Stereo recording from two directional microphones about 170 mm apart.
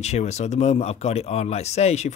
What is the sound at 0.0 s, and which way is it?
Speech, 40° left (ahead or behind).